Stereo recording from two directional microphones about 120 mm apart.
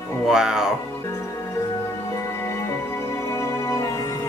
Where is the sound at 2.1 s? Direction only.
25° left (ahead or behind).